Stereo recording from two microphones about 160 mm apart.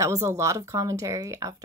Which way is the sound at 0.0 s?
20° right (ahead or behind).